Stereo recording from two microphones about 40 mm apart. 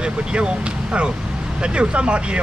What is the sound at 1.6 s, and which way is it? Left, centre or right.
Speech, right.